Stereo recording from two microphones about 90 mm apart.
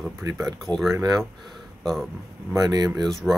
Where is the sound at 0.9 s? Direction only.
40° right (ahead or behind).